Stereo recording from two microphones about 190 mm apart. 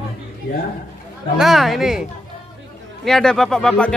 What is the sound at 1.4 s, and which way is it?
Speech, centre (ahead or behind).